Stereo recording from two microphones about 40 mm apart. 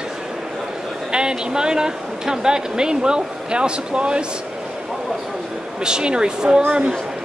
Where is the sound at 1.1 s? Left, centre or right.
Right.